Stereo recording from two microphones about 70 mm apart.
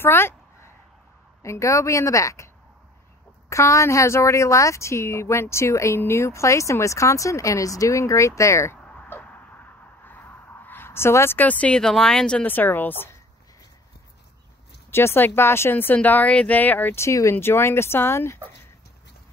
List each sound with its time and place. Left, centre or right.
0.0 s speech: left
1.4 s speech: left
10.0 s a sound: left
11.3 s speech: left
12.4 s speech: left
14.9 s speech: left
16.9 s speech: left